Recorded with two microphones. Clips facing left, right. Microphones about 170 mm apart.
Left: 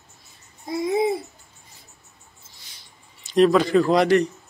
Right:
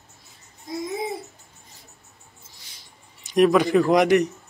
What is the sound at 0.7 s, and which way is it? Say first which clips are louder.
Babbling: left 6 dB; 65° left (ahead or behind).